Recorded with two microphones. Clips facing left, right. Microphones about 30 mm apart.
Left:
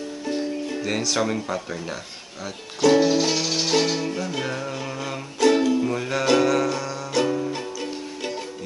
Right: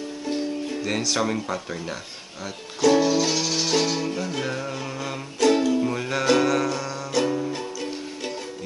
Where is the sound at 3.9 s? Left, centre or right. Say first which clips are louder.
Even; centre.